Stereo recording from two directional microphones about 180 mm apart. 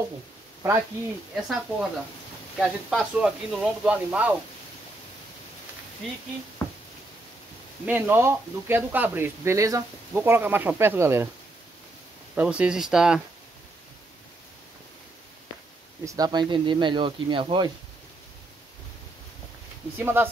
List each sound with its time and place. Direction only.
1.3 s speech: centre (ahead or behind)
7.8 s speech: 10° right (ahead or behind)
12.4 s speech: 5° right (ahead or behind)
16.1 s speech: 20° right (ahead or behind)
20.0 s speech: 10° right (ahead or behind)